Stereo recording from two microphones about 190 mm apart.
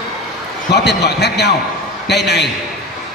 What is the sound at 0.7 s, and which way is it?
A man's voice, 60° left (ahead or behind).